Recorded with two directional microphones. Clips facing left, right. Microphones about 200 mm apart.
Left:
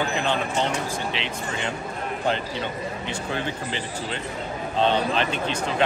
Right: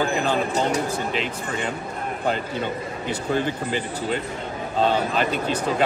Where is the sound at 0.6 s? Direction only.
40° right (ahead or behind).